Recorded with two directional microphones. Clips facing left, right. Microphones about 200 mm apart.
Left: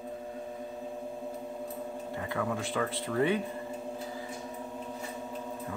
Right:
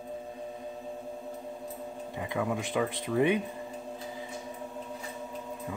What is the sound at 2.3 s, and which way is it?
Speech, 15° right (ahead or behind).